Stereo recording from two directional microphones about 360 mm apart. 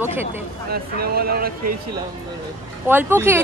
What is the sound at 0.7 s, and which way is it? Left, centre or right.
Speech, right.